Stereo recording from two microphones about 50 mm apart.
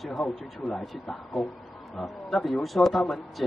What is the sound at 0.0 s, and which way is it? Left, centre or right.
Speech, centre.